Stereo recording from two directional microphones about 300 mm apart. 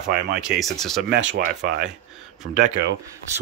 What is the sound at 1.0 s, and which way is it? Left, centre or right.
Speech, right.